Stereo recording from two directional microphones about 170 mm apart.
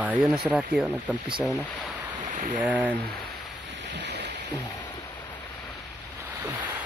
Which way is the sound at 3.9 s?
90° right.